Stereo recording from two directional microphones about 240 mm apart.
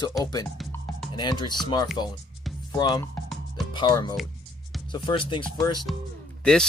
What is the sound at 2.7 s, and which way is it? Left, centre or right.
Speech, centre.